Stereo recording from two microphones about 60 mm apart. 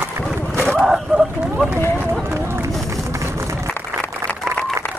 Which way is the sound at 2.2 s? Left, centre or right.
Right.